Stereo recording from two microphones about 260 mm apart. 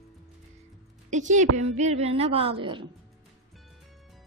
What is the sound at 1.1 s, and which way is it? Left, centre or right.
A woman's voice, right.